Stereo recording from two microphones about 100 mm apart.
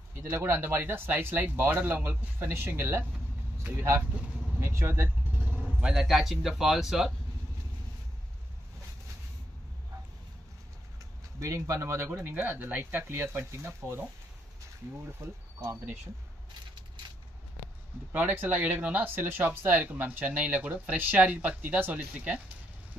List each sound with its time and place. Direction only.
0.2 s speech: 25° right (ahead or behind)
4.6 s vehicle: 25° right (ahead or behind)
5.8 s speech: 5° right (ahead or behind)
11.3 s speech: 30° right (ahead or behind)
15.2 s speech: 25° right (ahead or behind)
18.1 s speech: 20° right (ahead or behind)